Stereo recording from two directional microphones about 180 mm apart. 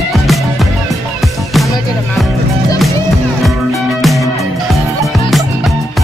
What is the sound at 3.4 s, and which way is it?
Music, centre (ahead or behind).